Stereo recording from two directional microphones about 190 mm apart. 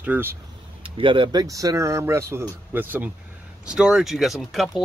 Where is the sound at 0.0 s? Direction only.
10° right (ahead or behind).